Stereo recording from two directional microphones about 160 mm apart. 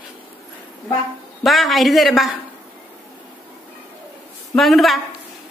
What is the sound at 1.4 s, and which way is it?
Speech, centre (ahead or behind).